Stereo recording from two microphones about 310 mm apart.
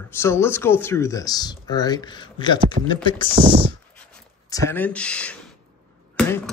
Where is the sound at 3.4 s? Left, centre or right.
Centre.